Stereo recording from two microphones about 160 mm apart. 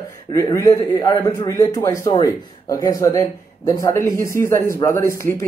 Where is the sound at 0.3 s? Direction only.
20° left (ahead or behind).